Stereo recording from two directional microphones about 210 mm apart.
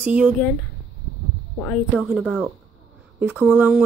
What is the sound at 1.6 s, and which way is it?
Speech, 5° left (ahead or behind).